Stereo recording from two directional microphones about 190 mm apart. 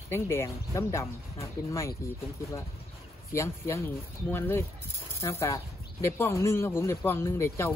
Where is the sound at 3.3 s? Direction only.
15° left (ahead or behind).